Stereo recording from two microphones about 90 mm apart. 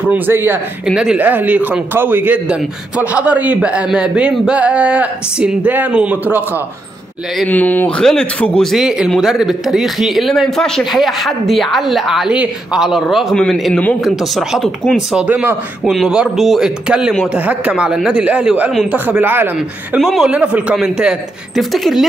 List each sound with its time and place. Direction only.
0.1 s speech: 25° right (ahead or behind)
0.8 s a man's voice: 5° right (ahead or behind)
1.1 s a man's voice: 20° right (ahead or behind)
7.4 s speech: 20° left (ahead or behind)
8.0 s speech: 5° left (ahead or behind)
8.7 s a man's voice: 5° right (ahead or behind)
15.0 s a man's voice: 10° right (ahead or behind)
20.0 s speech: 5° right (ahead or behind)
20.3 s a man's voice: 15° right (ahead or behind)